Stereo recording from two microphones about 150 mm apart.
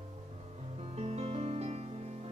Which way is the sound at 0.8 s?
45° right (ahead or behind).